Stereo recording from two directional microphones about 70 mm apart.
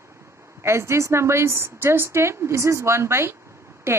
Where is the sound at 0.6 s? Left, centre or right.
Right.